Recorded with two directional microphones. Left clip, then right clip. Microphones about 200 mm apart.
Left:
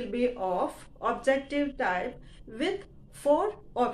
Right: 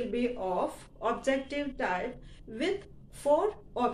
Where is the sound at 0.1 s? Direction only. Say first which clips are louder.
Left 7 dB; 10° left (ahead or behind).